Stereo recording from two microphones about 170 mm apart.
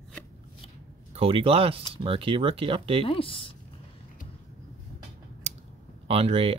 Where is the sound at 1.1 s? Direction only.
35° right (ahead or behind).